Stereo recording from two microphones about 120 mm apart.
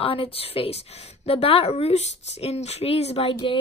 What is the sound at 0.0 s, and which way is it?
A woman's voice, 45° left (ahead or behind).